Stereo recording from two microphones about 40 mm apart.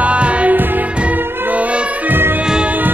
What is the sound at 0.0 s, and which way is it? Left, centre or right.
Music, right.